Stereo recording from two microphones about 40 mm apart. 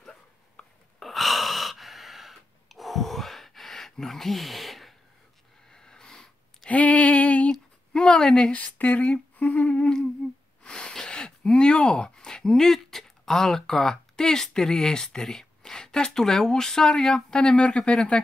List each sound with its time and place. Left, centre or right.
0.6 s a sound: centre
0.9 s gasp: centre
3.9 s speech: centre
5.7 s a sound: centre
6.7 s female singing: left
7.9 s a sound: left
8.4 s a woman's voice: left
8.7 s humming: left
10.6 s sneeze: centre
11.5 s speech: left